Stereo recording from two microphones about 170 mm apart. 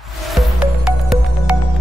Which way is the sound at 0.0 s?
Centre (ahead or behind).